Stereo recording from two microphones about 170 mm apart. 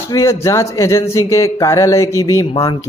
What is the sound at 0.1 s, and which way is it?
A woman's voice, 20° left (ahead or behind).